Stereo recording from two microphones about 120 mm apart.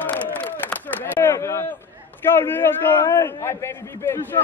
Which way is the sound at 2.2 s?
20° left (ahead or behind).